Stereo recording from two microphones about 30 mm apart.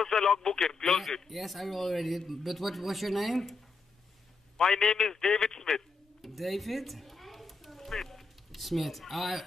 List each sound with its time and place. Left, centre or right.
0.0 s a man's voice: centre
0.8 s speech: centre
4.6 s a man's voice: centre
6.2 s a sound: centre
8.5 s speech: centre